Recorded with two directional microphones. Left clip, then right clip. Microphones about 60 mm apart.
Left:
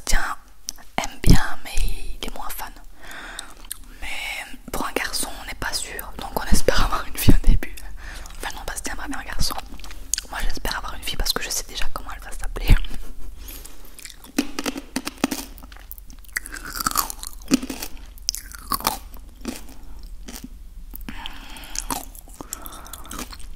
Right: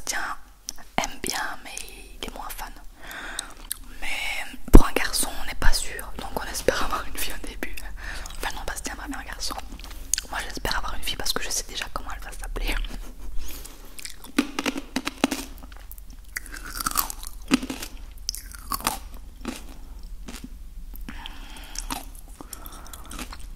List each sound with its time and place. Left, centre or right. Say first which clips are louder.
0.0 s whispering: left 3 dB; centre
3.0 s whispering: right 1 dB; centre
7.5 s whispering: even; centre
8.6 s whispering: left 2 dB; centre
9.8 s chewing: left 1 dB; centre
10.2 s whispering: even; centre
14.4 s a sound: even; centre
16.3 s crunch: left 5 dB; centre
21.0 s chewing: left 4 dB; left